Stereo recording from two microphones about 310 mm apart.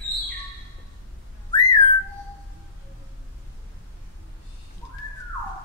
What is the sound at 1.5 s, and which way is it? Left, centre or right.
Whistling, centre.